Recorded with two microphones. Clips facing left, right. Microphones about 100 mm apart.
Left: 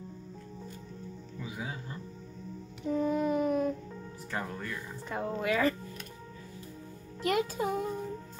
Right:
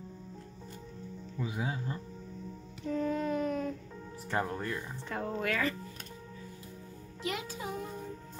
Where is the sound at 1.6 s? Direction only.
25° right (ahead or behind).